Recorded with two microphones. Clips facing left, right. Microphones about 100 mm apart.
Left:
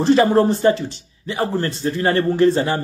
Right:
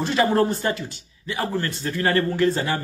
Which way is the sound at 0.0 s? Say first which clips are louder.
Left 6 dB; 30° left (ahead or behind).